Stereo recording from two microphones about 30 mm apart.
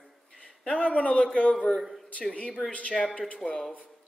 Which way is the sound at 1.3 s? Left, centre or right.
Left.